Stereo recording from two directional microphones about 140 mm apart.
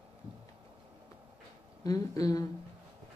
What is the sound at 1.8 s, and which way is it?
Speech, 25° left (ahead or behind).